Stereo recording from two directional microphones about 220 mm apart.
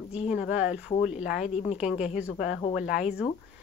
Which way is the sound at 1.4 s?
30° left (ahead or behind).